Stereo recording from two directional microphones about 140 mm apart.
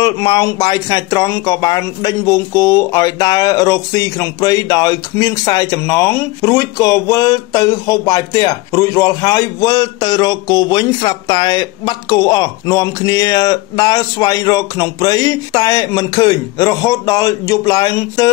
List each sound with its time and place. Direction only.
0.0 s speech: 30° left (ahead or behind)